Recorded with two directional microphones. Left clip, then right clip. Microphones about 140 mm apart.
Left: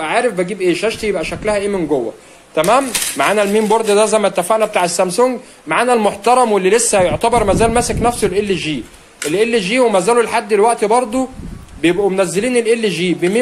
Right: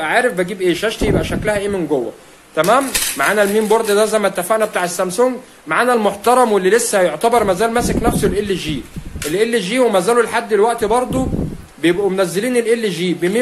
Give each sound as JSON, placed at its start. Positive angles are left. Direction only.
{"t": 0.0, "sound": "speech", "side_deg": 10}
{"t": 2.5, "sound": "a man's voice", "side_deg": 25}